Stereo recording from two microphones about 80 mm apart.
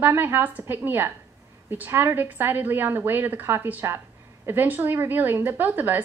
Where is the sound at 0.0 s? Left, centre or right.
Right.